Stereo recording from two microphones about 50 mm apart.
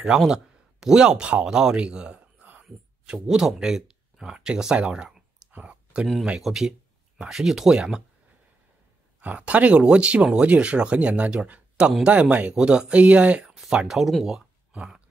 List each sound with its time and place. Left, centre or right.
0.0 s speech: centre
5.5 s clicking: right
6.4 s speech: centre
9.2 s speech: right
13.7 s speech: centre
13.9 s speech: centre
14.7 s a sound: right